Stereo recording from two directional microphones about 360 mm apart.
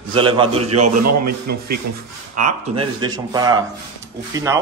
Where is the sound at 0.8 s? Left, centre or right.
Right.